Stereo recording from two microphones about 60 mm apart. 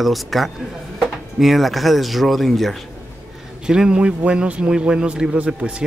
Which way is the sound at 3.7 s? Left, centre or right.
Centre.